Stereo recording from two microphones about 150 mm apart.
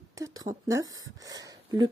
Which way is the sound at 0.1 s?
20° right (ahead or behind).